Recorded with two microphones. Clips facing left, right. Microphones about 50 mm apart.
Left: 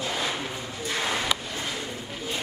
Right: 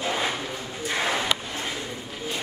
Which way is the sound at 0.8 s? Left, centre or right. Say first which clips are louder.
Right 2 dB; right.